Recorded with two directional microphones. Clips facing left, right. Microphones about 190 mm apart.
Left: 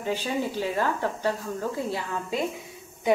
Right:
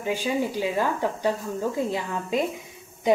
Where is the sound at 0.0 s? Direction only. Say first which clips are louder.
Right 2 dB; 15° right (ahead or behind).